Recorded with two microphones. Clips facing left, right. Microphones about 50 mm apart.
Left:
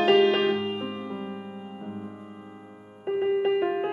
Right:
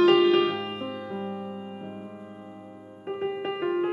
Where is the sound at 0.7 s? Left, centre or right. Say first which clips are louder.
Left 2 dB; centre.